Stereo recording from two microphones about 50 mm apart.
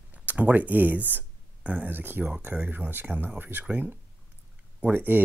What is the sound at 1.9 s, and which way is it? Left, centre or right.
Speech, right.